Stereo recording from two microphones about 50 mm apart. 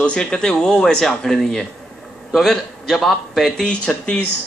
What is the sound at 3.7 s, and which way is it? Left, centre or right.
Speech, left.